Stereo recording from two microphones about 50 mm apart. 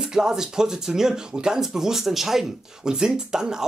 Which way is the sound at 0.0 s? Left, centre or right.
Centre.